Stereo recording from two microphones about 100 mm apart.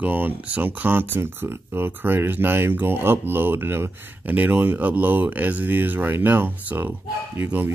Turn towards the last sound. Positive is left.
turn(degrees=-20)  # may be behind; listen again after turning